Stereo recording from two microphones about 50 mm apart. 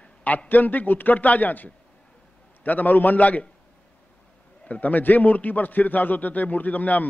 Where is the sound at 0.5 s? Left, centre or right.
Left.